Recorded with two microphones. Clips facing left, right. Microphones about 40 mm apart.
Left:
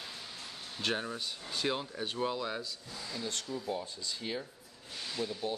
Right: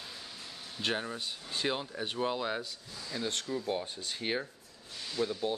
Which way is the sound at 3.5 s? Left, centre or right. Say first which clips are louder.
Right 3 dB; right.